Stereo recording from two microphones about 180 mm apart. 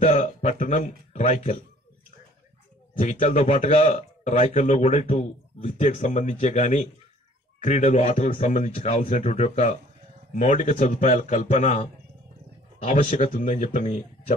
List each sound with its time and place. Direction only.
0.0 s a sound: 40° left (ahead or behind)
1.1 s speech: 40° left (ahead or behind)
3.0 s speech: 40° left (ahead or behind)